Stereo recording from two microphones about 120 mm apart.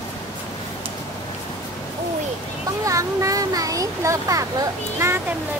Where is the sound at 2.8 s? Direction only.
25° right (ahead or behind).